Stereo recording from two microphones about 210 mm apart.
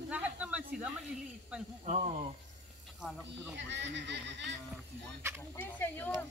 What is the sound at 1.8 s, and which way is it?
Speech, 30° right (ahead or behind).